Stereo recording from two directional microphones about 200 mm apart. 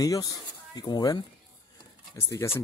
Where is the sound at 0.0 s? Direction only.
20° left (ahead or behind).